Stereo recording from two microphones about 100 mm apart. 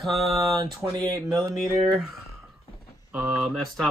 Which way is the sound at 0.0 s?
Centre (ahead or behind).